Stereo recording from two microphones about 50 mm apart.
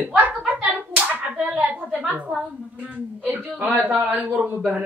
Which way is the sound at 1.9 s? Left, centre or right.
Right.